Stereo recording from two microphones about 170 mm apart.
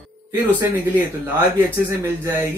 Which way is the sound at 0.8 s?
10° right (ahead or behind).